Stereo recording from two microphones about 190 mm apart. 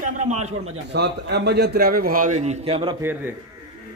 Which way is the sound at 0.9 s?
65° right (ahead or behind).